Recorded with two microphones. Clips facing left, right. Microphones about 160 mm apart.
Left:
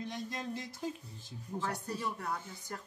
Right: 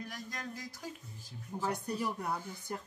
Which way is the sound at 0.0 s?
25° left (ahead or behind).